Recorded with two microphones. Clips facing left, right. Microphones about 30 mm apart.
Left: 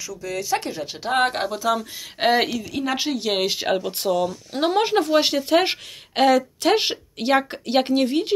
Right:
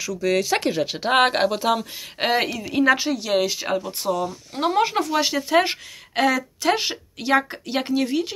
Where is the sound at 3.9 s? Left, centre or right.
Left.